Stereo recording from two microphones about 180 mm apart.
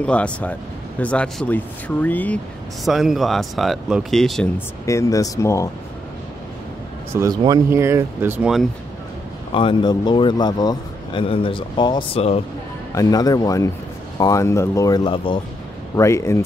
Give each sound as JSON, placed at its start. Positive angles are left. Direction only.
{"t": 0.0, "sound": "speech", "side_deg": 5}
{"t": 4.8, "sound": "speech", "side_deg": 15}
{"t": 7.2, "sound": "speech", "side_deg": -20}
{"t": 9.5, "sound": "speech", "side_deg": 30}
{"t": 12.9, "sound": "speech", "side_deg": 20}
{"t": 16.0, "sound": "speech", "side_deg": 15}